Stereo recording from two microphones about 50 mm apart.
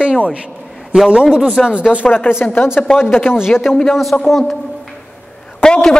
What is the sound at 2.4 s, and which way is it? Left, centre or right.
Speech, left.